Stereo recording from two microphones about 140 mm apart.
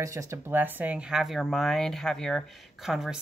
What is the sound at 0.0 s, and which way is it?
Speech, 20° right (ahead or behind).